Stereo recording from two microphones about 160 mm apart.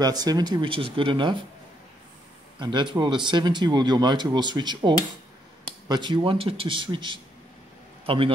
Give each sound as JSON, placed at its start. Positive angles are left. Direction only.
{"t": 0.0, "sound": "speech", "side_deg": -25}
{"t": 2.6, "sound": "a man's voice", "side_deg": -30}